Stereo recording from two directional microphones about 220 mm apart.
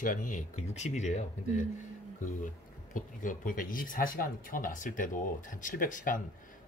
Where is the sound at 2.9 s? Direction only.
35° left (ahead or behind).